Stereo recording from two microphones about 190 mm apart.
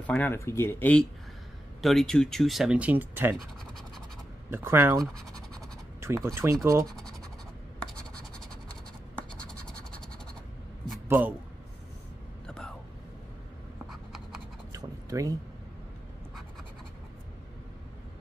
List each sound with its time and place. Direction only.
0.0 s speech: 10° left (ahead or behind); by 3.3 s 10° right (ahead or behind)
3.3 s scratch: centre (ahead or behind)
4.5 s speech: 10° right (ahead or behind)
9.3 s scratch: 5° left (ahead or behind)
11.1 s speech: 10° right (ahead or behind)
12.4 s whispering: 5° left (ahead or behind)
13.8 s writing: centre (ahead or behind)
14.7 s a sound: 15° right (ahead or behind)